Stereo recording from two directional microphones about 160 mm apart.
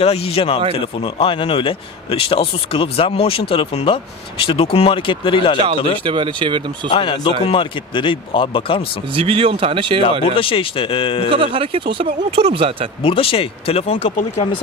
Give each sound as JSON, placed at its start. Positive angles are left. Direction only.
{"t": 0.0, "sound": "a man's voice", "side_deg": 40}
{"t": 6.0, "sound": "speech", "side_deg": -30}
{"t": 6.9, "sound": "a man's voice", "side_deg": 35}
{"t": 9.1, "sound": "speech", "side_deg": -35}
{"t": 10.2, "sound": "a man's voice", "side_deg": 35}
{"t": 11.2, "sound": "speech", "side_deg": -35}
{"t": 13.0, "sound": "a man's voice", "side_deg": 35}